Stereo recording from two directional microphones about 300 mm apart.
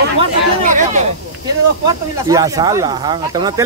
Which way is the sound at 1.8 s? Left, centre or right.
Centre.